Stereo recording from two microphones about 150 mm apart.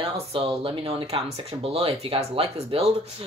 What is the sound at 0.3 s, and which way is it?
Speech, 40° right (ahead or behind).